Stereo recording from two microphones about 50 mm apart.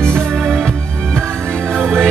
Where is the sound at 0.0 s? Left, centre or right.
Centre.